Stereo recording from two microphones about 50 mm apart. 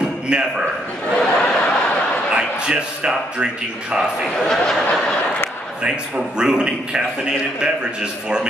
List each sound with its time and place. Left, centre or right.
0.3 s a man's voice: centre
1.1 s a sound: left
2.3 s speech: centre
3.9 s a man's voice: centre
4.5 s snicker: centre
5.8 s a man's voice: centre